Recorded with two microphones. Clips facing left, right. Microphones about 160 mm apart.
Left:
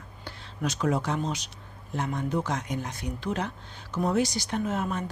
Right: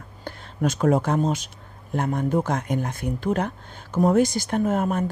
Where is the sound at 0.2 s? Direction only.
50° right (ahead or behind).